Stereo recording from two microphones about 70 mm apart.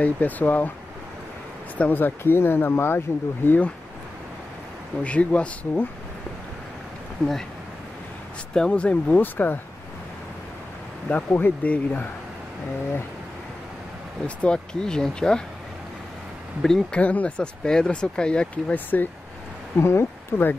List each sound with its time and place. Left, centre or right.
0.0 s speech: left
1.8 s speech: left
5.0 s speech: centre
8.5 s speech: centre
9.2 s speech: left
11.1 s speech: left
14.2 s speech: centre
16.6 s speech: centre
17.0 s speech: left
17.6 s speech: centre
19.8 s speech: left